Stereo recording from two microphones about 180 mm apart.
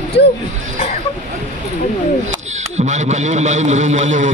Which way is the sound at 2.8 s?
40° right (ahead or behind).